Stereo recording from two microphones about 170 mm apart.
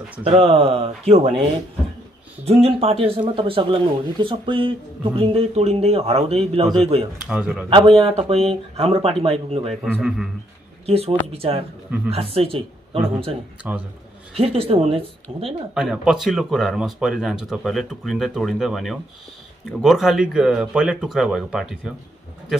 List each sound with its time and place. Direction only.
0.2 s speech: 35° right (ahead or behind)
2.4 s speech: 35° right (ahead or behind)
7.2 s speech: 5° right (ahead or behind)
7.7 s speech: 30° right (ahead or behind)
9.8 s speech: centre (ahead or behind)
10.9 s speech: 35° right (ahead or behind)
13.6 s a man's voice: 10° right (ahead or behind)
14.3 s speech: 35° right (ahead or behind)
15.7 s speech: 5° right (ahead or behind)